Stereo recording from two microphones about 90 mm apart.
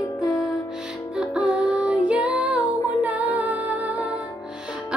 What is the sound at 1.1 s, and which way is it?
Music, 15° right (ahead or behind).